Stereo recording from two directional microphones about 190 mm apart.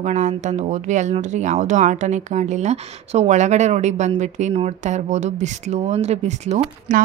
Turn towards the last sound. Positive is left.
turn(degrees=-35)  # may be behind; listen again after turning